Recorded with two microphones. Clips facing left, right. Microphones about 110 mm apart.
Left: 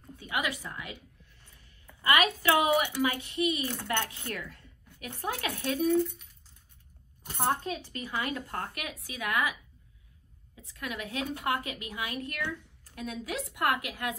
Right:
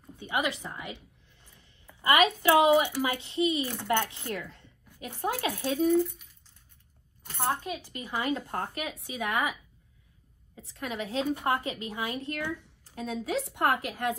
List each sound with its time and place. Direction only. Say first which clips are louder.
0.1 s a woman's voice: right 3 dB; 25° right (ahead or behind)
1.4 s a sound: right 5 dB; 20° right (ahead or behind)
2.0 s speech: right 3 dB; 25° right (ahead or behind)
5.9 s speech: right 1 dB; 5° right (ahead or behind)
7.2 s speech: left 1 dB; 15° left (ahead or behind)
7.6 s speech: left 1 dB; 5° right (ahead or behind)
7.9 s speech: right 6 dB; 20° right (ahead or behind)
10.7 s a woman's voice: right 3 dB; 30° right (ahead or behind)